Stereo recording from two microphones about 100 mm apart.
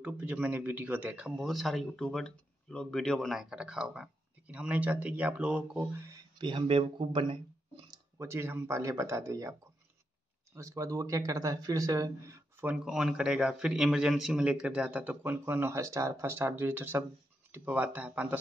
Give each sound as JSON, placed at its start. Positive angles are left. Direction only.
{"t": 0.0, "sound": "speech", "side_deg": -15}
{"t": 1.3, "sound": "speech", "side_deg": 0}
{"t": 5.8, "sound": "speech", "side_deg": -30}
{"t": 6.3, "sound": "speech", "side_deg": -50}
{"t": 7.0, "sound": "speech", "side_deg": -60}
{"t": 8.2, "sound": "speech", "side_deg": -25}
{"t": 12.6, "sound": "speech", "side_deg": -10}